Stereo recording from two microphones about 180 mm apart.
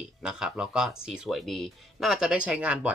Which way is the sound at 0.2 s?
5° right (ahead or behind).